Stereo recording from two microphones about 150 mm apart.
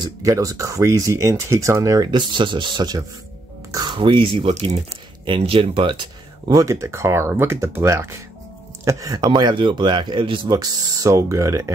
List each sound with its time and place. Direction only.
0.0 s speech: 20° right (ahead or behind)